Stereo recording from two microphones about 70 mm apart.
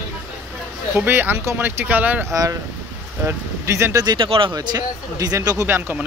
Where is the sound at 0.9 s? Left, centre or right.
Right.